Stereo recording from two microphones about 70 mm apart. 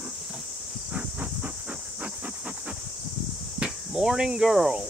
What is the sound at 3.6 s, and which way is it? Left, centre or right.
Cricket, centre.